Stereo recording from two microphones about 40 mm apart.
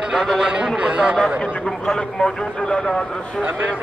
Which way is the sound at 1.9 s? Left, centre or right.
Centre.